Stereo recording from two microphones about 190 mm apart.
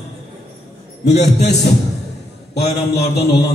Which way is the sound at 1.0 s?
60° left (ahead or behind).